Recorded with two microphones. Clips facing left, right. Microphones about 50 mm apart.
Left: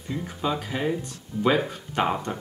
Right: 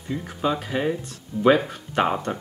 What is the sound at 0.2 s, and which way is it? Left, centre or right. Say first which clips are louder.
Speech: right 2 dB; centre.